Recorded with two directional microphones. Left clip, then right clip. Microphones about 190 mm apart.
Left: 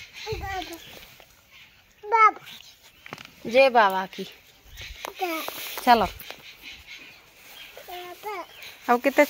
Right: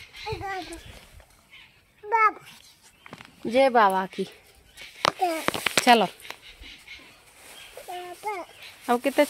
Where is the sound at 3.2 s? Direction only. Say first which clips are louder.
Left 2 dB; 20° right (ahead or behind).